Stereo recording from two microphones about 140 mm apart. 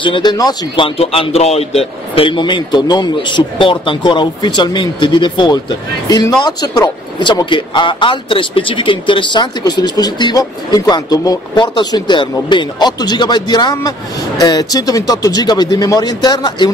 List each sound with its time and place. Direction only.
0.0 s speech: 35° left (ahead or behind)